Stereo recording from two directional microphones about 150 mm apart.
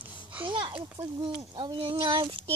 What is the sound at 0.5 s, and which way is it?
Speech, 30° right (ahead or behind).